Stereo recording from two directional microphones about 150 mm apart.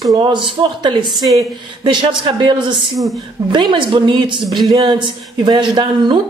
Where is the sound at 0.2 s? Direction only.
30° right (ahead or behind).